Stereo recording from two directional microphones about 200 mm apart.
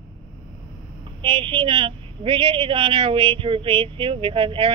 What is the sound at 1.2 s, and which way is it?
A woman's voice, 25° right (ahead or behind).